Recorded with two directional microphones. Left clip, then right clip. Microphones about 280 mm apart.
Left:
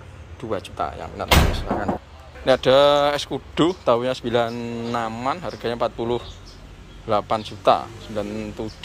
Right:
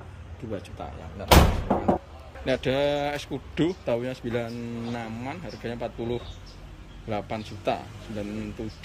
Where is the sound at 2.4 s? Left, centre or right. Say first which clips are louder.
Left 10 dB; centre.